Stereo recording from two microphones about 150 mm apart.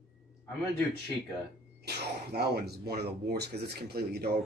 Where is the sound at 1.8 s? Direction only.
90° right.